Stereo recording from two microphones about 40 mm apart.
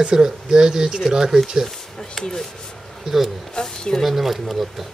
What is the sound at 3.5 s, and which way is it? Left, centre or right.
Speech, centre.